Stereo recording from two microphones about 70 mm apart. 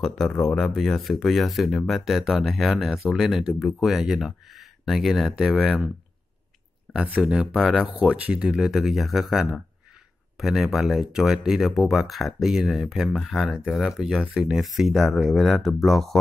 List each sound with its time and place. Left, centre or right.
0.4 s speech: centre
7.1 s speech: centre